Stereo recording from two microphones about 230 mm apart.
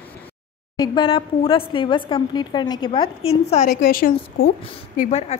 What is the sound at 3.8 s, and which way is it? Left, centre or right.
Speech, left.